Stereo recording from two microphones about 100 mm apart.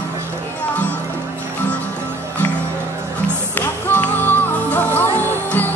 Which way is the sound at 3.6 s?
20° left (ahead or behind).